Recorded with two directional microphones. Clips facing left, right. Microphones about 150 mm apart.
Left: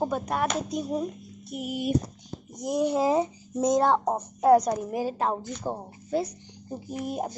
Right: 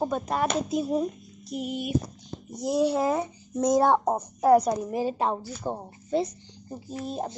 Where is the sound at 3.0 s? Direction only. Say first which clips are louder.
Left 2 dB; 20° left (ahead or behind).